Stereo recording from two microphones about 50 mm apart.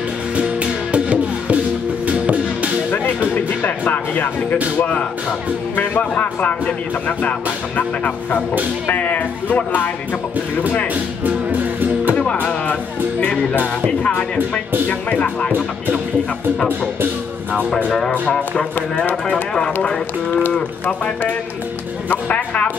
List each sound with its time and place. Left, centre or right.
0.4 s music: right
2.9 s music: left
4.7 s speech: left
11.2 s music: right
12.4 s music: left
13.8 s speech: left
19.2 s speech: centre
22.1 s speech: left